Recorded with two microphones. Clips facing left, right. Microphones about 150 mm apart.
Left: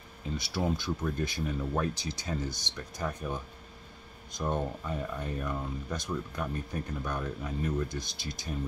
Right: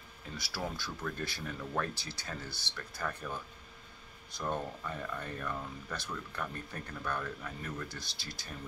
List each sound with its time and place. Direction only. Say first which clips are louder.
0.4 s speech: left 7 dB; 20° left (ahead or behind)